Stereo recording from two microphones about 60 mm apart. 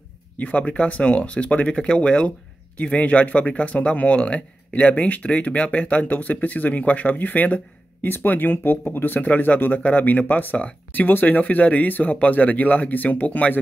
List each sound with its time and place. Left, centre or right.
0.4 s speech: left